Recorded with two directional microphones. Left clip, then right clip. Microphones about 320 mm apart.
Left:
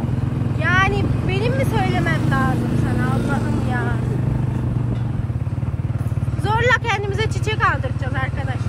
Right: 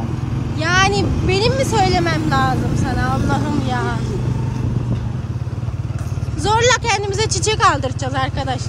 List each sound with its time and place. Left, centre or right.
0.6 s vehicle: centre
6.4 s speech: centre